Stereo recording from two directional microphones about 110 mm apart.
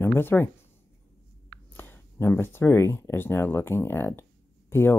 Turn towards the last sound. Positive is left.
turn(degrees=20)  # may be behind; listen again after turning